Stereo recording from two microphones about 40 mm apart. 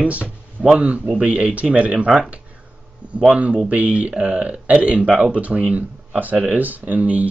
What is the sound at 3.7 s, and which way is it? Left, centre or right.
Speech, right.